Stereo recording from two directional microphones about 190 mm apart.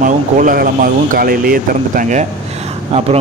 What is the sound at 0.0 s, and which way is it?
Speech, 45° right (ahead or behind).